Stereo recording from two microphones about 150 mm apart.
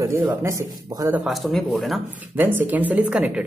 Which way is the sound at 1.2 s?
Centre (ahead or behind).